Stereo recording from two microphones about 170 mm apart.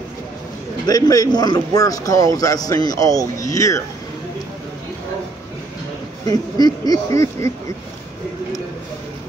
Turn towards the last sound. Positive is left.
turn(degrees=20)  # may be behind; listen again after turning